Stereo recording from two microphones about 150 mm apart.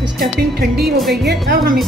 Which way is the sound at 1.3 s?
90° right.